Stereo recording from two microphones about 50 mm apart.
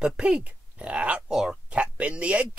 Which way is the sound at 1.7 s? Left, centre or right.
Right.